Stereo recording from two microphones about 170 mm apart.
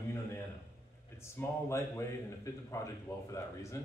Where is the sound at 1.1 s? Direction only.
15° left (ahead or behind).